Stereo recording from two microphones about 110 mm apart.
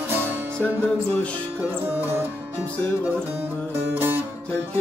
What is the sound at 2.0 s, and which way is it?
Music, 20° right (ahead or behind).